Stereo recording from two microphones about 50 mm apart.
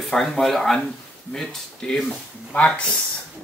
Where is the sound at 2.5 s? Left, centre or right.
Left.